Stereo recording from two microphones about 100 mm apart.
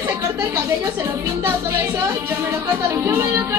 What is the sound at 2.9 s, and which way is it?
Speech, 25° right (ahead or behind).